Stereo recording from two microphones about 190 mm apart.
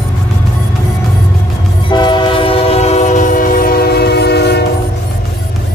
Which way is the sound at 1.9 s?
25° left (ahead or behind).